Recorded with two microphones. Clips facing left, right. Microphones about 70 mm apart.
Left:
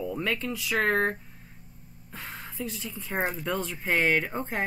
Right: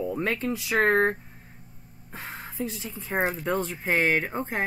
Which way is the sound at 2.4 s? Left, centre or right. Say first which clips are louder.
Right 4 dB; right.